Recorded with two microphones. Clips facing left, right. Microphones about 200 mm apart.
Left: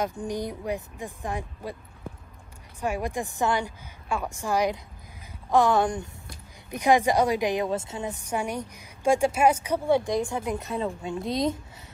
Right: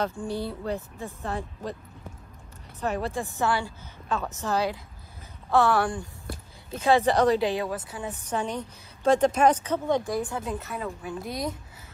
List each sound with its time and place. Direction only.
0.2 s speech: 15° left (ahead or behind)
2.8 s a woman's voice: 15° left (ahead or behind)
8.1 s a woman's voice: 10° left (ahead or behind)